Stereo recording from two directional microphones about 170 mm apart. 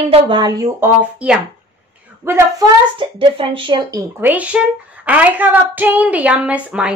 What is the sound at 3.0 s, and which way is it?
Speech, 30° right (ahead or behind).